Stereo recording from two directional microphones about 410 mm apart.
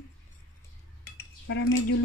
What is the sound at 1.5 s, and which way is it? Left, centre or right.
Speech, left.